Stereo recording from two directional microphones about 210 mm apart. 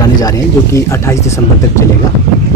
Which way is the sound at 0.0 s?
15° left (ahead or behind).